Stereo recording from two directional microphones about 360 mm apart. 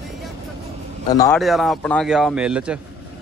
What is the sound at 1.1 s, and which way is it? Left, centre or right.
A man's voice, centre.